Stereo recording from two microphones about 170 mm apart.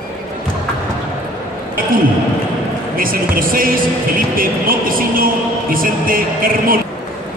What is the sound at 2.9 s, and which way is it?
Speech, 55° right (ahead or behind).